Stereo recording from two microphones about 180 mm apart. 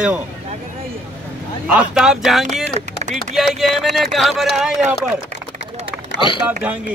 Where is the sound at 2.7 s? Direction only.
35° right (ahead or behind).